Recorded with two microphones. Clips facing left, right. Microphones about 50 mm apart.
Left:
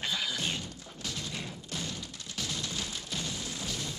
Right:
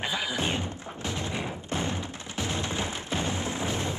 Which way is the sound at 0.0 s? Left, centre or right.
Right.